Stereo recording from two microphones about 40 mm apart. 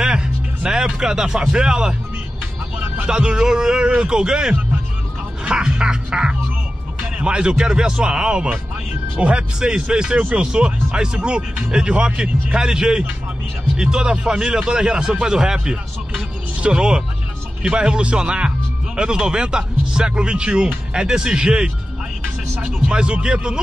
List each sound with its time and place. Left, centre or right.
0.0 s music: centre
0.7 s speech: centre
3.1 s speech: right
5.5 s music: right
7.2 s speech: right
22.8 s speech: right